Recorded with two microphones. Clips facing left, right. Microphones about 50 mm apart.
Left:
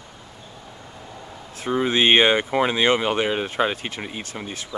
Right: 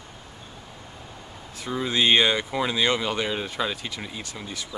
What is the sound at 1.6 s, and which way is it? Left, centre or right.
Speech, left.